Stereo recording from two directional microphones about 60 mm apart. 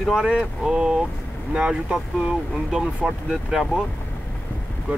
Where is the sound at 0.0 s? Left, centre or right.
Centre.